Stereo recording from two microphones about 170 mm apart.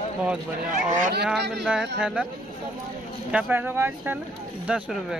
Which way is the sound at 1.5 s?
Centre (ahead or behind).